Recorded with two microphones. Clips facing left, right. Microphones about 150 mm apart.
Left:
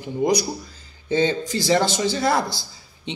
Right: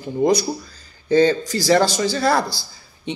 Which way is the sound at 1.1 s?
20° left (ahead or behind).